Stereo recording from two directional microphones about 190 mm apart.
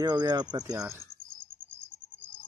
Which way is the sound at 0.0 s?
20° right (ahead or behind).